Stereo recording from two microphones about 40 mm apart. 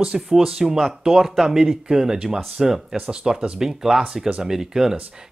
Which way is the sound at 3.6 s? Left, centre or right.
Centre.